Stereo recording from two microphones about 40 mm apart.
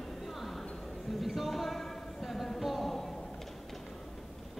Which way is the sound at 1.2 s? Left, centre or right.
Centre.